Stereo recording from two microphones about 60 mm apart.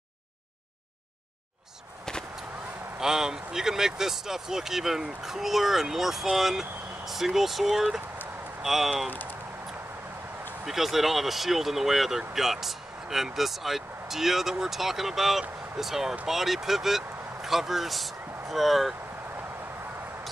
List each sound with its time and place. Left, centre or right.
3.0 s speech: centre
9.1 s a sound: left
10.6 s speech: centre